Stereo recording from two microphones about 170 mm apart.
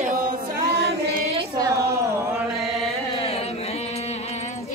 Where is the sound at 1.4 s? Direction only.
20° right (ahead or behind).